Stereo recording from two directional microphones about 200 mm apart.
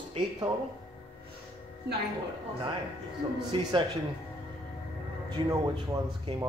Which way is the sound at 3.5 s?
25° right (ahead or behind).